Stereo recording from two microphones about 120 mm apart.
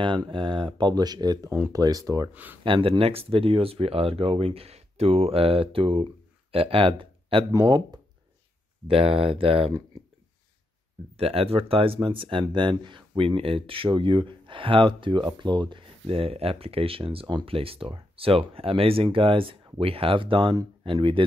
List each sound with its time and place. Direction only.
0.0 s speech: 40° right (ahead or behind)
2.3 s speech: 15° right (ahead or behind)
2.6 s speech: 45° right (ahead or behind)
7.5 s speech: 35° right (ahead or behind)
8.8 s speech: 50° right (ahead or behind)
11.1 s speech: 55° right (ahead or behind); by 15.8 s 40° right (ahead or behind)
16.1 s speech: 55° right (ahead or behind)